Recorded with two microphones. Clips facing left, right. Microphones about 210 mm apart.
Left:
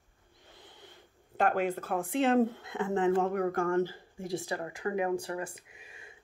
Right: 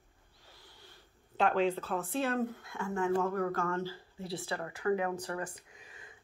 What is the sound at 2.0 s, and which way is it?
Speech, 20° left (ahead or behind).